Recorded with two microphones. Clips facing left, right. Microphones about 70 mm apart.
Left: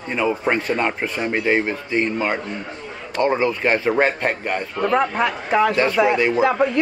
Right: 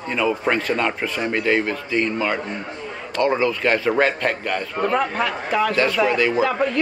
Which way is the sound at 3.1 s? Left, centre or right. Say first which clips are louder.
Left 1 dB; centre.